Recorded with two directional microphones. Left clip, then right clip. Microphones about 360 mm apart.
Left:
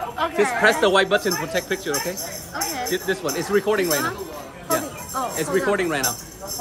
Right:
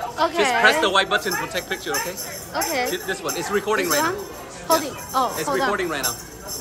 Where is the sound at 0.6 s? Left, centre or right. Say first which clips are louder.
Left 1 dB; centre.